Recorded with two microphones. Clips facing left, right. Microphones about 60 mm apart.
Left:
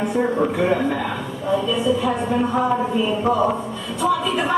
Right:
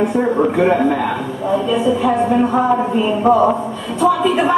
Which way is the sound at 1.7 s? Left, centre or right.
Right.